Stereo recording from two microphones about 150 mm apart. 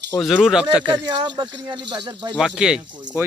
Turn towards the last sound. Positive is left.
turn(degrees=-5)  # may be behind; listen again after turning